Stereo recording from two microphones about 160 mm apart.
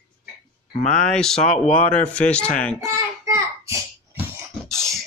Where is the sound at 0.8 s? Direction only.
5° left (ahead or behind).